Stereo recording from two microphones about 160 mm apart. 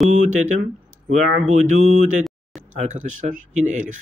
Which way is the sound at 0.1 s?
50° right (ahead or behind).